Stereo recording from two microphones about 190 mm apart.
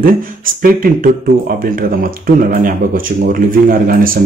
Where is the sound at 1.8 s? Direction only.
50° right (ahead or behind).